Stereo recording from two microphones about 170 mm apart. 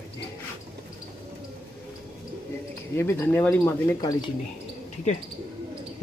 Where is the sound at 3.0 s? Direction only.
15° left (ahead or behind).